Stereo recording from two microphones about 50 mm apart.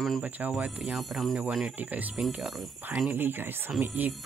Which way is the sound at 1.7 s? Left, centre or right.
Right.